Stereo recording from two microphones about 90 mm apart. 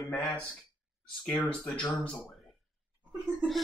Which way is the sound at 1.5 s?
15° left (ahead or behind).